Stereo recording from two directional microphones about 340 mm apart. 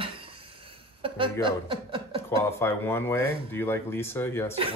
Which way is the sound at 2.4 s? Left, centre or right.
Centre.